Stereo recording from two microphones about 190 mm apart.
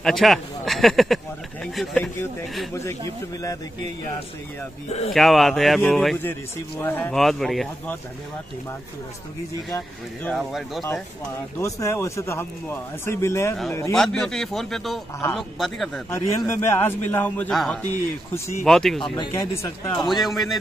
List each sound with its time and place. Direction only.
0.0 s speech: centre (ahead or behind)
2.7 s a man's voice: 15° left (ahead or behind)
4.8 s speech: 35° left (ahead or behind)
5.1 s speech: centre (ahead or behind)
10.3 s speech: centre (ahead or behind)
11.5 s a man's voice: 15° left (ahead or behind)
13.9 s speech: centre (ahead or behind)
16.1 s a man's voice: 15° left (ahead or behind)
19.1 s speech: 25° left (ahead or behind)
19.5 s a man's voice: 15° left (ahead or behind)
20.1 s speech: centre (ahead or behind)